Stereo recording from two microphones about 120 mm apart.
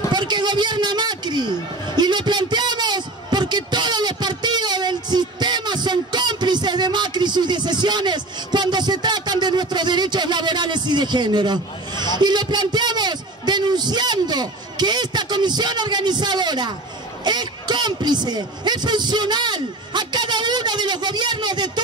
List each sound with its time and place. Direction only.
0.1 s speech: 40° right (ahead or behind)
2.0 s a sound: 35° right (ahead or behind)
17.2 s a man's voice: 35° right (ahead or behind)